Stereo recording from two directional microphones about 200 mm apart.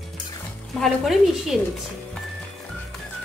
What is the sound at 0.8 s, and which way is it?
Speech, centre (ahead or behind).